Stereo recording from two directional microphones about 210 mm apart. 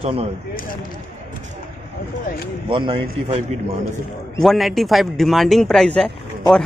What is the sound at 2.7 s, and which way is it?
Speech, 25° right (ahead or behind).